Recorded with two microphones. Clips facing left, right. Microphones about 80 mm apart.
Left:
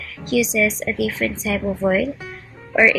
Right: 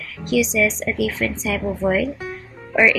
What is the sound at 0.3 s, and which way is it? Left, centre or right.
Speech, centre.